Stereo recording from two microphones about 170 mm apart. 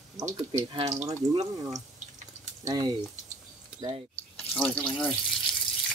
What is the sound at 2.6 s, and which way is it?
Speech, 25° right (ahead or behind).